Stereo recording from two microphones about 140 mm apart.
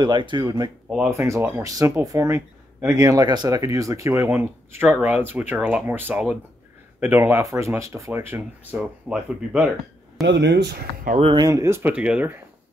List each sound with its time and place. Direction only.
0.0 s speech: 35° right (ahead or behind)
0.8 s speech: 10° right (ahead or behind)
11.3 s speech: 25° right (ahead or behind)